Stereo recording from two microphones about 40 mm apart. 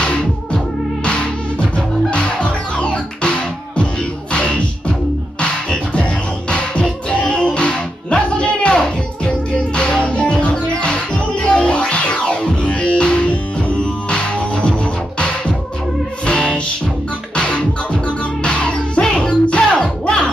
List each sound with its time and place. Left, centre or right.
0.0 s music: left
9.8 s music: left